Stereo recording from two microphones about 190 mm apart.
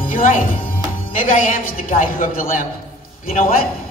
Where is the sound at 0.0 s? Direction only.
45° left (ahead or behind).